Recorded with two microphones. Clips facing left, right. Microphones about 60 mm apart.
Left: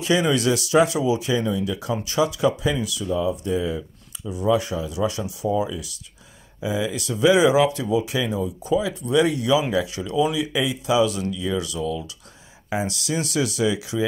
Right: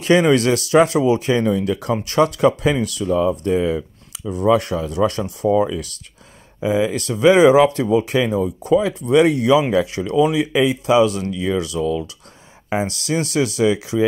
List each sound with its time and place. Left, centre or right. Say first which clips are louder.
0.0 s speech: right 6 dB; right
3.1 s speech: right 6 dB; right
5.5 s speech: right 7 dB; right
6.6 s speech: right 7 dB; right